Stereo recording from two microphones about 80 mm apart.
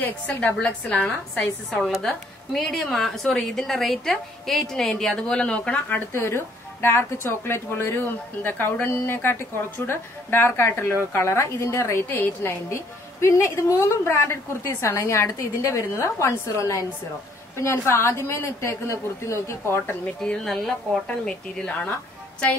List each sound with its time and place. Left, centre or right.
0.0 s a woman's voice: centre
6.1 s speech: left
20.4 s a woman's voice: centre